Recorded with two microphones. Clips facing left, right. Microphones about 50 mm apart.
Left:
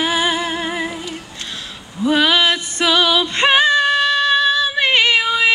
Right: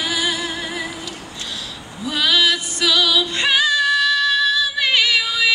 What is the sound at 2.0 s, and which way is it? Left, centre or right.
Music, left.